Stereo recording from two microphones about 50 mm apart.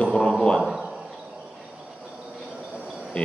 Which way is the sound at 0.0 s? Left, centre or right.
Centre.